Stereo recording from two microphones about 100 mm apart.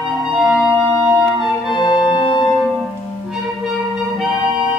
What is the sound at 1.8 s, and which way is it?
Organ, 45° left (ahead or behind).